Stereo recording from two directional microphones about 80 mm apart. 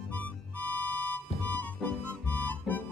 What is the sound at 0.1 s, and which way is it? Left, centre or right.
Music, left.